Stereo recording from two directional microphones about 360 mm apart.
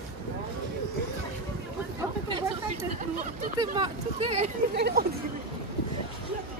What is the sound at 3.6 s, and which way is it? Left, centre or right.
Speech, centre.